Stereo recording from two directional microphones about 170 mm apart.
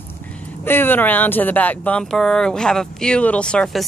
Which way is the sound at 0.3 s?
10° left (ahead or behind).